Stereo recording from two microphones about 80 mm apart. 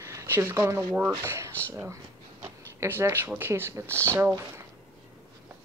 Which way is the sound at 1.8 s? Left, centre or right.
Right.